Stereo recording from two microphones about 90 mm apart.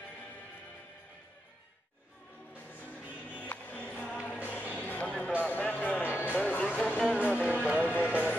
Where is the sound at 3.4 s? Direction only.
20° left (ahead or behind).